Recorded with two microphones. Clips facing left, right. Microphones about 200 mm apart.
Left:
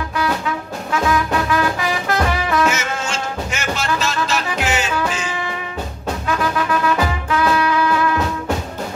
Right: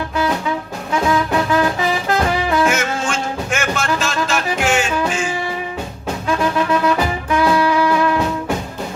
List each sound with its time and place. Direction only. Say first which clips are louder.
1.5 s brass instrument: right 2 dB; 30° right (ahead or behind)
2.7 s music: right 3 dB; 55° right (ahead or behind)